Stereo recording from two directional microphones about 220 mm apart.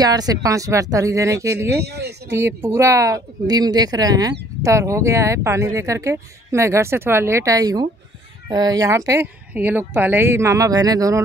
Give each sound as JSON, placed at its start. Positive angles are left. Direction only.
{"t": 0.0, "sound": "speech", "side_deg": -15}
{"t": 1.8, "sound": "speech", "side_deg": -50}
{"t": 2.2, "sound": "speech", "side_deg": -10}